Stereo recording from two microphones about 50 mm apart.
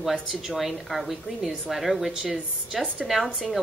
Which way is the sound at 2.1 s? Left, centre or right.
Centre.